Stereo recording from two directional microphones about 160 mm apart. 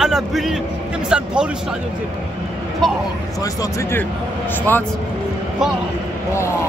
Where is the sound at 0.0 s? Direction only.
Centre (ahead or behind).